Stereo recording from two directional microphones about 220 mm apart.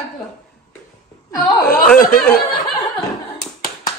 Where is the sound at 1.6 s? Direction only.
5° left (ahead or behind).